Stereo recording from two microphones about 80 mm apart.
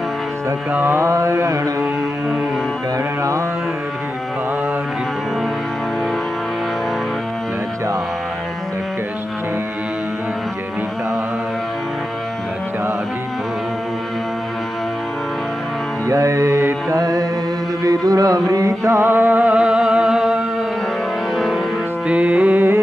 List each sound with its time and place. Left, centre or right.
0.7 s mantra: right
1.0 s mantra: right
16.1 s mantra: right
17.0 s carnatic music: right
17.8 s music: right; by 20.4 s centre
22.0 s music: centre